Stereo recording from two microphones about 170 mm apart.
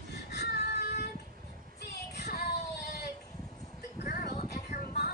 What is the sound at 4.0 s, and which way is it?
Music, 45° left (ahead or behind).